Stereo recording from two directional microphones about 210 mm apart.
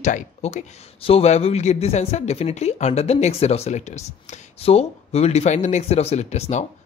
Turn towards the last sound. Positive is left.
turn(degrees=35)  # may be behind; listen again after turning